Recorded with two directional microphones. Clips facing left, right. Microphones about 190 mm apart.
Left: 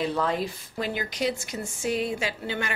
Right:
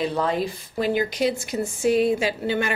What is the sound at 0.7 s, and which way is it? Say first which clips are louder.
Speech: right 7 dB; 15° right (ahead or behind).